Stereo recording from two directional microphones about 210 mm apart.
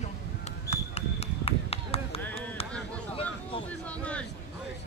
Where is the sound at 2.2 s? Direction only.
10° left (ahead or behind).